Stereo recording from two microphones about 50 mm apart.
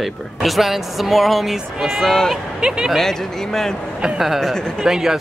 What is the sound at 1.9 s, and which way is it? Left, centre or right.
Speech, centre.